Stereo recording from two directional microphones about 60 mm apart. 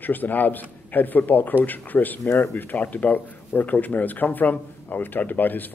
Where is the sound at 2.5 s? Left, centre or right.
Left.